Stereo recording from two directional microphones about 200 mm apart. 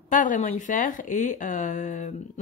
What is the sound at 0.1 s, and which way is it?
Speech, 40° left (ahead or behind).